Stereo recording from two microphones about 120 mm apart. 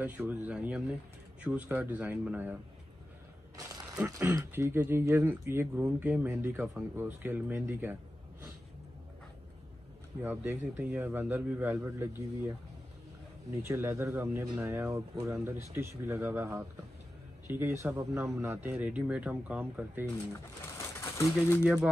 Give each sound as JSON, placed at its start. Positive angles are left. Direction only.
{"t": 0.0, "sound": "speech", "side_deg": -15}
{"t": 3.5, "sound": "a sound", "side_deg": -30}
{"t": 4.0, "sound": "speech", "side_deg": -15}
{"t": 10.2, "sound": "speech", "side_deg": -20}
{"t": 13.5, "sound": "speech", "side_deg": -20}
{"t": 20.7, "sound": "pigeon", "side_deg": 25}